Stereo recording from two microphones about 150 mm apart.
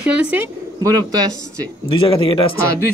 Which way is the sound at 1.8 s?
35° left (ahead or behind).